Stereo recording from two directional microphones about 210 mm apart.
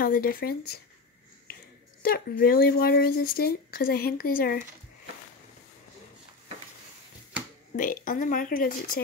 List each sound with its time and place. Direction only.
0.0 s speech: 45° left (ahead or behind)
2.0 s speech: 45° left (ahead or behind)
7.7 s speech: 40° left (ahead or behind)